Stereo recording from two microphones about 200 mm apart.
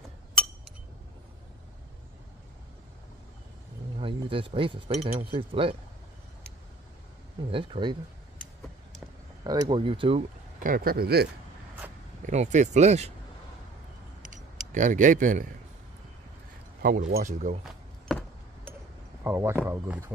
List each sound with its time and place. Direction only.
4.0 s speech: 25° right (ahead or behind)
7.5 s speech: 25° right (ahead or behind)
9.4 s speech: 20° right (ahead or behind)
10.6 s speech: 45° right (ahead or behind)
12.3 s speech: 35° right (ahead or behind)
14.2 s a sound: 40° right (ahead or behind)
16.8 s speech: 50° right (ahead or behind)
17.6 s chop: centre (ahead or behind)
19.2 s speech: 10° right (ahead or behind)